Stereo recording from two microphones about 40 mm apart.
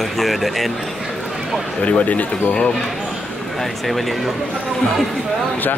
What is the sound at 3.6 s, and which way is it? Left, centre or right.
Speech, centre.